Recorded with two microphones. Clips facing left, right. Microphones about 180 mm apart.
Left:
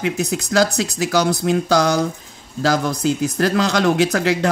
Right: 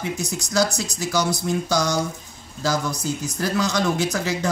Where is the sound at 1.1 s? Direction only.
65° left (ahead or behind).